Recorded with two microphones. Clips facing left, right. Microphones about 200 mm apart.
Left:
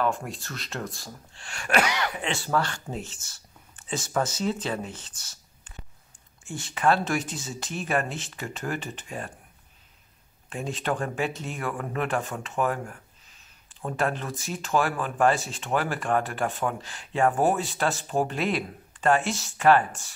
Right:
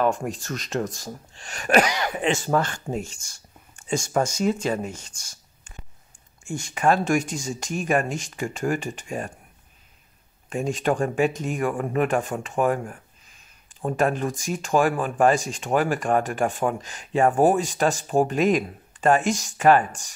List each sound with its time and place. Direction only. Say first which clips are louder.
0.0 s speech: right 4 dB; 15° right (ahead or behind)
1.5 s sneeze: right 5 dB; 40° right (ahead or behind)
2.4 s speech: right 4 dB; 15° right (ahead or behind)
6.4 s speech: right 2 dB; 15° right (ahead or behind)
10.5 s speech: right 6 dB; 15° right (ahead or behind)
13.8 s speech: right 5 dB; 15° right (ahead or behind)